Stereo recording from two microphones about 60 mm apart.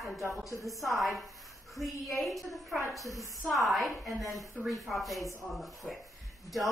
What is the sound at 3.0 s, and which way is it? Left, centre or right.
Speech, left.